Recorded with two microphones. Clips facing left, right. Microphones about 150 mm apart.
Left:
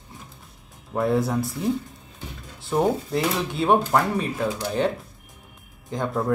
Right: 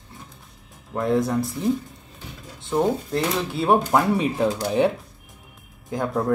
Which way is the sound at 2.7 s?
Centre (ahead or behind).